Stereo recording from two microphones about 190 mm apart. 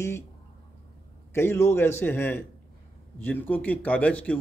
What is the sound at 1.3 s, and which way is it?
Speech, 10° left (ahead or behind).